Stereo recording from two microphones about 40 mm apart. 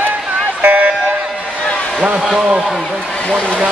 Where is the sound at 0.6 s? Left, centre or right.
Right.